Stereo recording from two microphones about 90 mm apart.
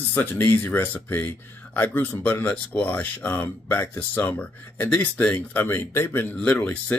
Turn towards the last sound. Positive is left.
turn(degrees=15)  # may be behind; listen again after turning